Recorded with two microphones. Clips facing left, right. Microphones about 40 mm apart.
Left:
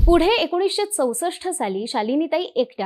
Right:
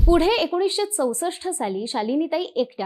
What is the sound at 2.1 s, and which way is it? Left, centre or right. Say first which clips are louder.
Speech: left 2 dB; centre.